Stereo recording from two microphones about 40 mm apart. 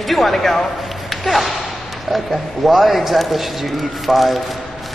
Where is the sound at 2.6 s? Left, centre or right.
Centre.